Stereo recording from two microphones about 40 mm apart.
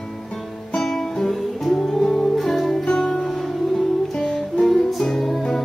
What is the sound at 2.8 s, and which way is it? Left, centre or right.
Music, centre.